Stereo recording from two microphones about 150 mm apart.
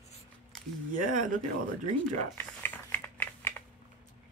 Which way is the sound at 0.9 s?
60° right (ahead or behind).